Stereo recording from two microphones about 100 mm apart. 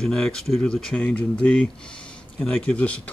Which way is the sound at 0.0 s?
5° left (ahead or behind).